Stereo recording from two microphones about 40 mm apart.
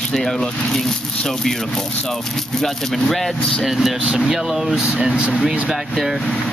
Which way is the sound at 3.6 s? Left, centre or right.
Centre.